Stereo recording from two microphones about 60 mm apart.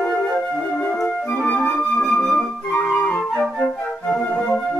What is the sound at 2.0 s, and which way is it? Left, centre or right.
Flute, centre.